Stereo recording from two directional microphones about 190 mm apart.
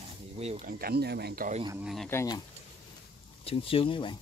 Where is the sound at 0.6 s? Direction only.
50° right (ahead or behind).